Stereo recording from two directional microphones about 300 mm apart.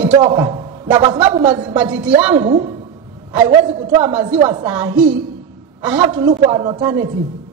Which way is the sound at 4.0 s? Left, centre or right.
Centre.